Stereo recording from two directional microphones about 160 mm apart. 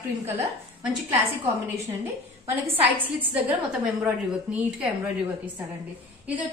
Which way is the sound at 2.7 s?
10° right (ahead or behind).